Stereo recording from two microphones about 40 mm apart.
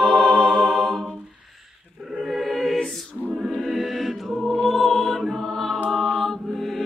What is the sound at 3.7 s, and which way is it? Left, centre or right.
Mantra, centre.